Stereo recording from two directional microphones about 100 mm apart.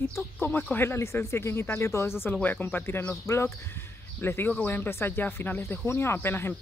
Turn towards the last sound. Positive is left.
turn(degrees=25)  # may be behind; listen again after turning